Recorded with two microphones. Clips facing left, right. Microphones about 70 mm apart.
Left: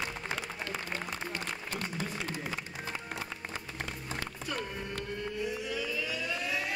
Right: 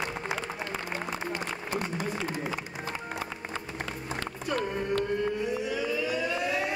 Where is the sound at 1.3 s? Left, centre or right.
Centre.